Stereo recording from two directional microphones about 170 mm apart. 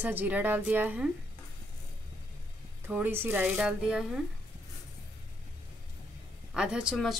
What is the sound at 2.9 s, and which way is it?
A woman's voice, 10° right (ahead or behind).